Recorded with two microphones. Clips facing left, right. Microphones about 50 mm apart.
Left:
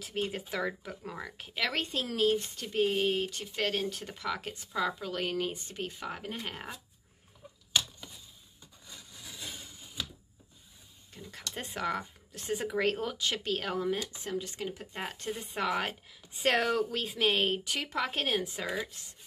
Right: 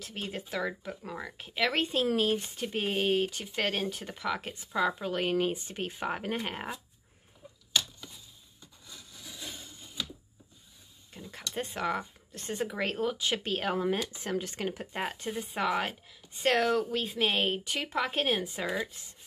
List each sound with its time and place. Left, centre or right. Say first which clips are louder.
0.0 s speech: left 3 dB; centre; by 4.0 s right
4.0 s speech: right 2 dB; centre
9.1 s a sound: even; centre
11.1 s speech: right 4 dB; centre
14.2 s speech: right 3 dB; right; by 19.1 s centre